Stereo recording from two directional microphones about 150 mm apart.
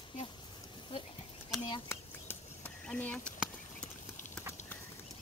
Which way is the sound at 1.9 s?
10° left (ahead or behind).